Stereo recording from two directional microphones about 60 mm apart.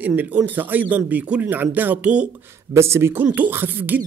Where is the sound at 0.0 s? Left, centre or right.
Right.